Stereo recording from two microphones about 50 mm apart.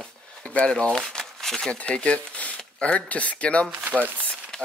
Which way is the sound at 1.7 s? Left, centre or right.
Left.